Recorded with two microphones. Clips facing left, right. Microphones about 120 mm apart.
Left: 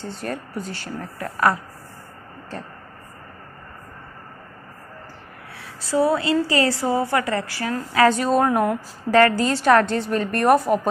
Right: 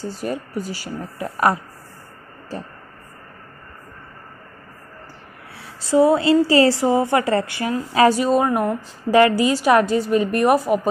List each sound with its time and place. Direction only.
0.0 s a woman's voice: 5° right (ahead or behind)
1.2 s a woman's voice: 20° right (ahead or behind)
5.6 s a woman's voice: 25° right (ahead or behind)
8.1 s a woman's voice: 5° right (ahead or behind)
9.1 s a woman's voice: 10° right (ahead or behind)